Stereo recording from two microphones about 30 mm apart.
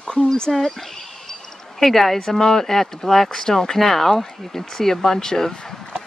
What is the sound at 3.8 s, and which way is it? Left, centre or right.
Speech, centre.